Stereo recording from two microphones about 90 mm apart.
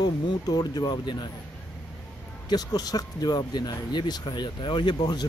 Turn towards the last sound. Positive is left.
turn(degrees=55)  # may be behind; listen again after turning